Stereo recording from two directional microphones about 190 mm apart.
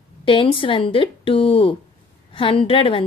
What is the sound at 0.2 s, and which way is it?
A woman's voice, 25° left (ahead or behind).